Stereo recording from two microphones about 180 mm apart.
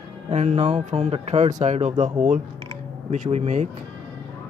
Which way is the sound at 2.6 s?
40° right (ahead or behind).